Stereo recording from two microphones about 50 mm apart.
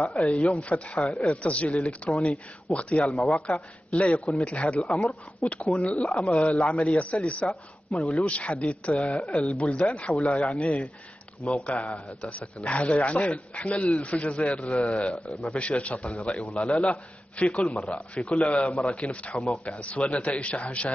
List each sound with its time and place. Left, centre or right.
0.0 s speech: centre
0.6 s speech: left